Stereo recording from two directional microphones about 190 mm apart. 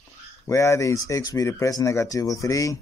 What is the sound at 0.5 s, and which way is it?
Speech, 15° left (ahead or behind).